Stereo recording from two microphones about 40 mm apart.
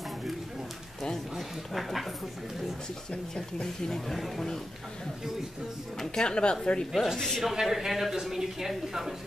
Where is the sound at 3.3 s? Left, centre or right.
Centre.